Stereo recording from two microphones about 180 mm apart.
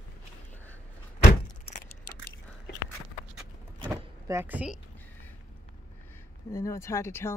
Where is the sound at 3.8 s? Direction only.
15° right (ahead or behind).